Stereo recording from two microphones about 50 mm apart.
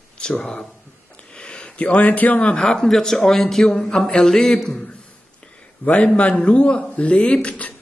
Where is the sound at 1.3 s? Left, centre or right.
Centre.